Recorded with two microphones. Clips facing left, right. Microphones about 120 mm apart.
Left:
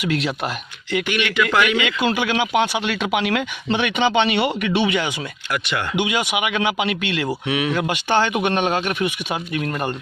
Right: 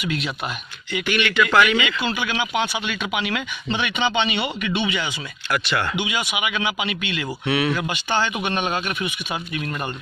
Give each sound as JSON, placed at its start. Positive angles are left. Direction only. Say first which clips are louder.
{"t": 0.0, "sound": "speech", "louder": "left 4 dB", "side_deg": 90}
{"t": 1.0, "sound": "speech", "louder": "right 3 dB", "side_deg": 15}
{"t": 1.8, "sound": "speech", "louder": "left 4 dB", "side_deg": 70}
{"t": 5.5, "sound": "speech", "louder": "right 2 dB", "side_deg": 15}
{"t": 5.9, "sound": "speech", "louder": "left 4 dB", "side_deg": 65}
{"t": 7.4, "sound": "speech", "louder": "right 4 dB", "side_deg": 15}
{"t": 7.7, "sound": "speech", "louder": "left 4 dB", "side_deg": 65}